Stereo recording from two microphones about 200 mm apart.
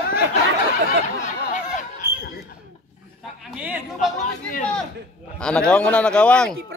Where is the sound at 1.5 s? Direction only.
40° left (ahead or behind).